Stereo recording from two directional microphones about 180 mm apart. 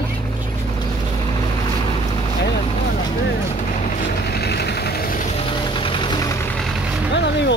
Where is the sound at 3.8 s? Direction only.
60° left (ahead or behind).